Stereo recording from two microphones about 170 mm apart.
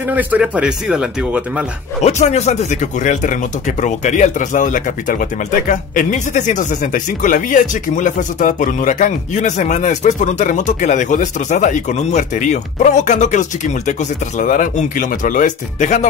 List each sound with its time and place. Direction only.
0.1 s speech: 10° right (ahead or behind)
2.0 s speech: 40° left (ahead or behind)